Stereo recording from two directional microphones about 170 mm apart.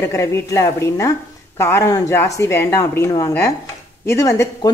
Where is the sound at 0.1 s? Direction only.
15° left (ahead or behind).